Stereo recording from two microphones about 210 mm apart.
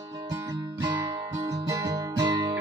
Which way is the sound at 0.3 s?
15° right (ahead or behind).